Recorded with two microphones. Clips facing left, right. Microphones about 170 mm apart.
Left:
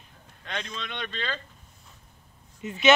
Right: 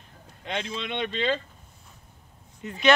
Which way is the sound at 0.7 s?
20° right (ahead or behind).